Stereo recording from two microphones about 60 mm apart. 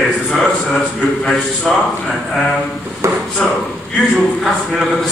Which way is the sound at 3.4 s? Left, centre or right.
Centre.